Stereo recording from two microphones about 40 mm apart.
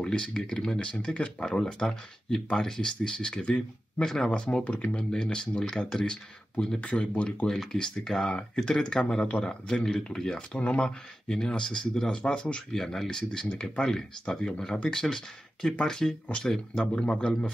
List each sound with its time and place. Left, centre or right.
0.0 s speech: left
4.6 s speech: left
4.9 s speech: centre
6.8 s speech: left
7.4 s speech: centre
9.3 s speech: left
9.7 s speech: centre
10.5 s speech: left
12.7 s speech: centre
13.5 s speech: left
16.8 s speech: left